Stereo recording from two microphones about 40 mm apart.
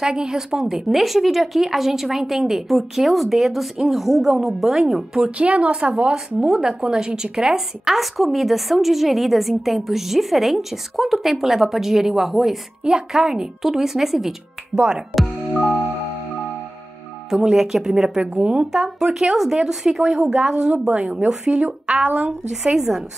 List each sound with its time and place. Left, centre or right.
0.0 s a woman's voice: centre
5.4 s a woman's voice: right; by 14.3 s centre
14.8 s a woman's voice: right
17.3 s a woman's voice: centre; by 22.3 s right
22.5 s speech: centre